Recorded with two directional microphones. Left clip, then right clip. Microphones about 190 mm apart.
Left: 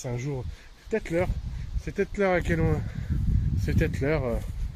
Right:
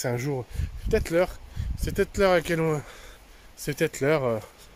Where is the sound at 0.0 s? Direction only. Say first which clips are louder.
Right 6 dB; 40° right (ahead or behind).